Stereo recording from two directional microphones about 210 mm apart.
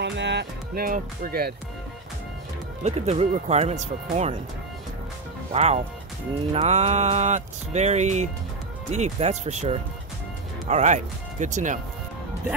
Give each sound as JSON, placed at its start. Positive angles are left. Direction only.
{"t": 0.0, "sound": "speech", "side_deg": -55}
{"t": 2.8, "sound": "music", "side_deg": -30}
{"t": 5.5, "sound": "music", "side_deg": -30}